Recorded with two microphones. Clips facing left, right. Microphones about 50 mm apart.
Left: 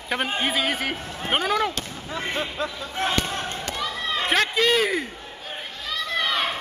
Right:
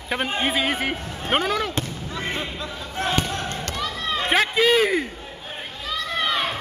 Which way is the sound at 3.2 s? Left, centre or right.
Centre.